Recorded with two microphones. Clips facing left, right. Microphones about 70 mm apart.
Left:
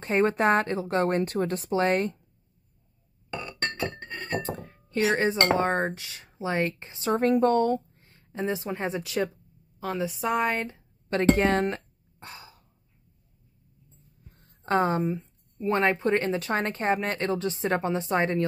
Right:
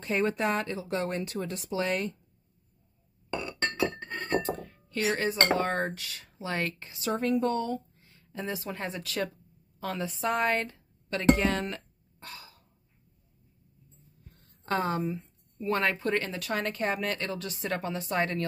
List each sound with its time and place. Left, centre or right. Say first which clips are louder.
0.0 s speech: left 5 dB; left
4.4 s a sound: right 1 dB; left
5.1 s a woman's voice: left 2 dB; left; by 10.8 s centre
11.1 s speech: left 3 dB; left
12.2 s a sound: left 2 dB; left
14.6 s speech: left 5 dB; left